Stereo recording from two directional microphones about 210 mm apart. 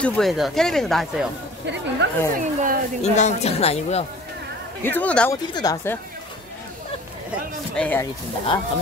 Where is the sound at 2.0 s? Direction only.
55° right (ahead or behind).